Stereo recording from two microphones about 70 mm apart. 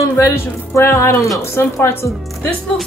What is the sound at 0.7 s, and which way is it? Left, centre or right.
Music, left.